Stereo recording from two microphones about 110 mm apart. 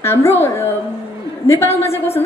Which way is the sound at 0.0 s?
20° left (ahead or behind).